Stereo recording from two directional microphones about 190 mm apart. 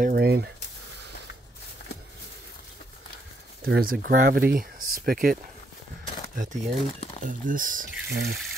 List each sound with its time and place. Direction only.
0.0 s a sound: 55° right (ahead or behind)
3.6 s speech: 50° right (ahead or behind)
6.3 s speech: 45° right (ahead or behind)
8.1 s speech: 55° right (ahead or behind)